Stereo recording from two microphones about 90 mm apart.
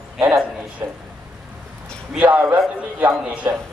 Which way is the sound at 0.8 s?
25° right (ahead or behind).